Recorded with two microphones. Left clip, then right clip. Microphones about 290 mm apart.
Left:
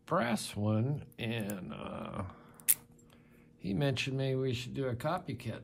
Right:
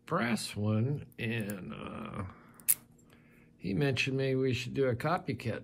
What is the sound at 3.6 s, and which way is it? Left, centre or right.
Speech, centre.